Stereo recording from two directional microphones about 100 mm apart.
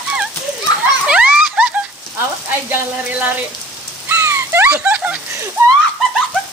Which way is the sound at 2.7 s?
15° right (ahead or behind).